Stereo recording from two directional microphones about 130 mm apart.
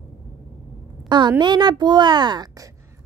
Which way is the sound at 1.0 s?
35° right (ahead or behind).